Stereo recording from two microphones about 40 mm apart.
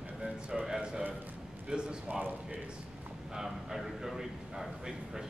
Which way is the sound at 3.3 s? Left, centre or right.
Centre.